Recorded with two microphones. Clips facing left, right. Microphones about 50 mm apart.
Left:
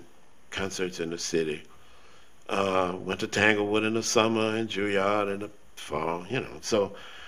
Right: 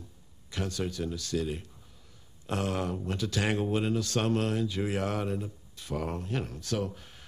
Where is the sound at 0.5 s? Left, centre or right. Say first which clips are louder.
Left 3 dB; left.